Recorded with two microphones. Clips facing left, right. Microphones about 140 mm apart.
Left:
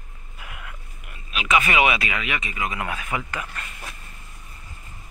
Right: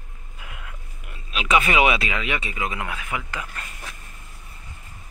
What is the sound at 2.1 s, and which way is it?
Speech, 30° right (ahead or behind).